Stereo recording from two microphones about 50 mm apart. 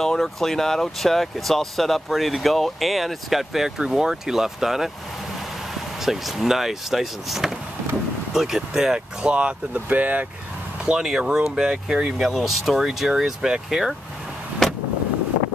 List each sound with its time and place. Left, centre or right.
0.0 s speech: centre
6.0 s speech: centre
9.8 s speech: right
10.9 s speech: centre
12.2 s speech: centre